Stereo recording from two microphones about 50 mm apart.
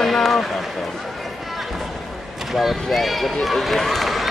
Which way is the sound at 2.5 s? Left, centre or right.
Centre.